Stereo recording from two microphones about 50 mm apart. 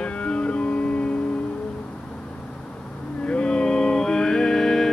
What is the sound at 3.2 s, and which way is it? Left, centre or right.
Music, left.